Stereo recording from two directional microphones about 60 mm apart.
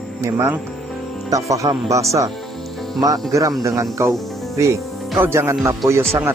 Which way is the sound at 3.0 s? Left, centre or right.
Right.